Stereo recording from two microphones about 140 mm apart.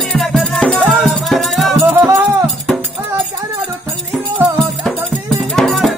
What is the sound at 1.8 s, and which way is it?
Music, 15° right (ahead or behind).